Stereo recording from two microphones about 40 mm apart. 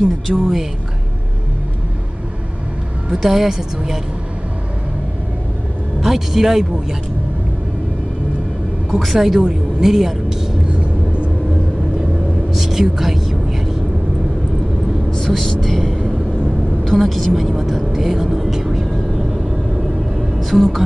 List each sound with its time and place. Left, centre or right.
0.3 s a woman's voice: centre
3.1 s a woman's voice: centre
5.9 s a woman's voice: centre
9.0 s a woman's voice: centre
10.7 s vehicle: right
12.5 s a sound: centre
15.0 s vehicle: centre
15.6 s speech: centre
18.4 s vehicle: centre
19.7 s a sound: centre